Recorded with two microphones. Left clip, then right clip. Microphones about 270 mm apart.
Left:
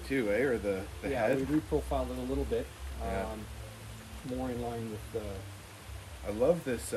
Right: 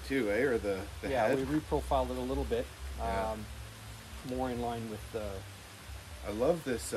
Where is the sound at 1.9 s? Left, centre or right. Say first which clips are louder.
Right 6 dB; right.